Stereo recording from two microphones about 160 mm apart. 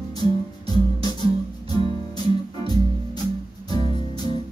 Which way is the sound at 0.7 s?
25° left (ahead or behind).